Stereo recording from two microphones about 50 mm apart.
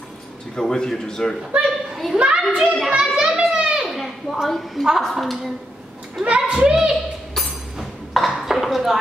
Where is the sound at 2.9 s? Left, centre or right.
Centre.